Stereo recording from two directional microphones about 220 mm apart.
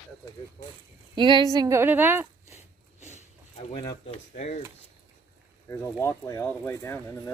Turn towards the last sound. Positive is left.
turn(degrees=10)  # may be behind; listen again after turning